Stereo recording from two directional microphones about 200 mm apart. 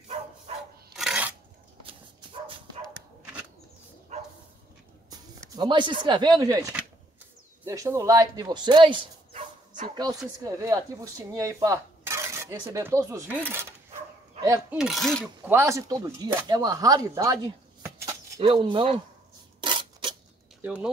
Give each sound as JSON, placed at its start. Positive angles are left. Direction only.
{"t": 0.9, "sound": "filing", "side_deg": -5}
{"t": 4.1, "sound": "dog", "side_deg": -35}
{"t": 5.1, "sound": "speech", "side_deg": -25}
{"t": 14.8, "sound": "speech", "side_deg": 0}
{"t": 15.4, "sound": "speech", "side_deg": -15}
{"t": 19.6, "sound": "filing", "side_deg": -25}
{"t": 20.6, "sound": "speech", "side_deg": -5}